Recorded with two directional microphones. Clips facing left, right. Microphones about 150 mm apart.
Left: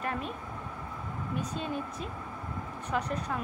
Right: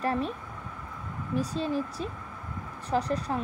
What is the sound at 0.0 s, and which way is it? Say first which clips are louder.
Speech: right 6 dB; 35° right (ahead or behind).